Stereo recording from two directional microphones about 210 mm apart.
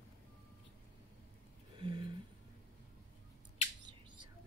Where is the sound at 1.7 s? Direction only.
25° right (ahead or behind).